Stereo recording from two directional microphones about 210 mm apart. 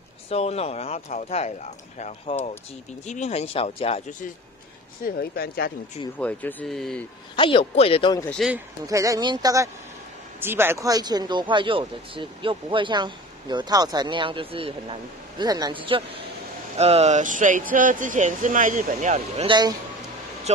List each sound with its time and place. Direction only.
0.3 s speech: 30° left (ahead or behind)
5.0 s speech: 45° left (ahead or behind)
6.1 s speech: 5° left (ahead or behind)
7.3 s speech: 25° left (ahead or behind)
8.2 s speech: 5° left (ahead or behind)
8.5 s speech: 10° right (ahead or behind); by 20.6 s 30° right (ahead or behind)